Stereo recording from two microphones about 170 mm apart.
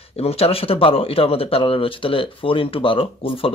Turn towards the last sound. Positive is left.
turn(degrees=30)  # may be behind; listen again after turning